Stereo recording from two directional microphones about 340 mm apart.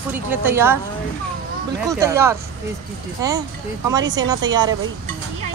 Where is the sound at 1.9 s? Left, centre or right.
Centre.